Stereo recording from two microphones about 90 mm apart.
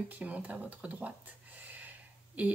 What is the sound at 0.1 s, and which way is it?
Speech, 15° right (ahead or behind).